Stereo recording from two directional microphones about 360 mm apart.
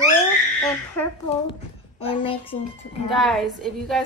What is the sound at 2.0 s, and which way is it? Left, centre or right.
A woman's voice, centre.